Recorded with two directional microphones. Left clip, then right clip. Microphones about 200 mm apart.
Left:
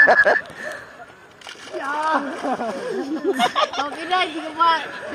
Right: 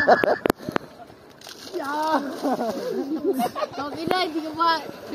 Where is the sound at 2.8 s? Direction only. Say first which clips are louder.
Left 2 dB; 5° left (ahead or behind).